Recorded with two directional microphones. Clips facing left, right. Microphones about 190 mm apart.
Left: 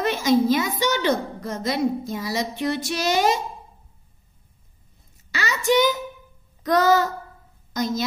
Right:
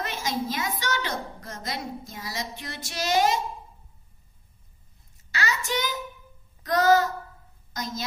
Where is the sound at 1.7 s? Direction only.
65° left (ahead or behind).